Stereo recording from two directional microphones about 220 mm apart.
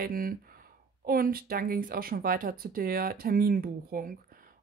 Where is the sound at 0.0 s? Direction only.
40° right (ahead or behind).